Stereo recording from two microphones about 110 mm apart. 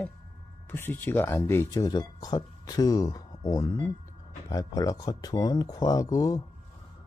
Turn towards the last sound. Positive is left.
turn(degrees=35)  # may be behind; listen again after turning